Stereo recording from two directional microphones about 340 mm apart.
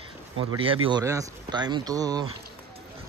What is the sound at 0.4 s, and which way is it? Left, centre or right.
Speech, centre.